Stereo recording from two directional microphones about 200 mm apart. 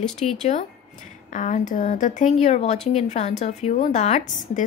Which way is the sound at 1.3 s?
40° left (ahead or behind).